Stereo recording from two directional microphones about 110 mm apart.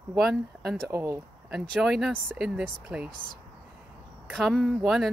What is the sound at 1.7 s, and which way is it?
Speech, 5° right (ahead or behind).